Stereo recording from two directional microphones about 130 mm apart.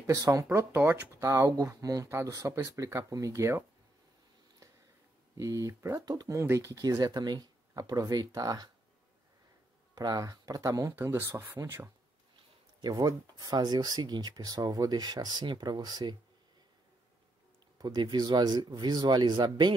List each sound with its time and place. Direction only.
0.0 s speech: 25° right (ahead or behind)
5.4 s speech: 25° right (ahead or behind)
9.9 s speech: 30° right (ahead or behind)
12.8 s speech: 30° right (ahead or behind)
17.7 s speech: 30° right (ahead or behind)